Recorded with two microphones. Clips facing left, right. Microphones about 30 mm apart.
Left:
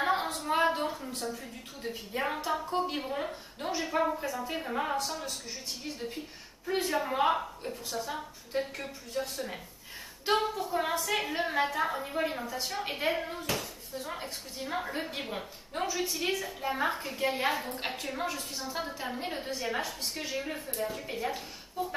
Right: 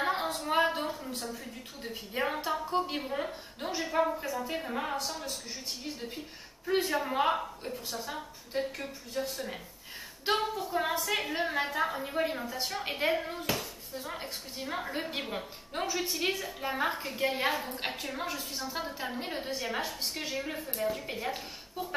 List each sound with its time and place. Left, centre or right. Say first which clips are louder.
0.0 s a sound: left 1 dB; centre
0.5 s a woman's voice: left 1 dB; centre
15.9 s a woman's voice: right 1 dB; centre
19.8 s a woman's voice: even; centre
20.2 s a woman's voice: even; centre